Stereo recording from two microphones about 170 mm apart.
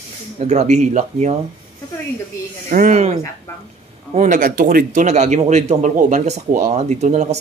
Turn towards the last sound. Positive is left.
turn(degrees=-40)  # may be behind; listen again after turning